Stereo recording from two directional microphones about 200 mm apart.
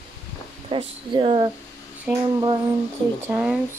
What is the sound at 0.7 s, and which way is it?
Speech, 25° right (ahead or behind).